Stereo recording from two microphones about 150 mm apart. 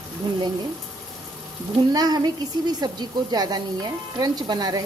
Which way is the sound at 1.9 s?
25° right (ahead or behind).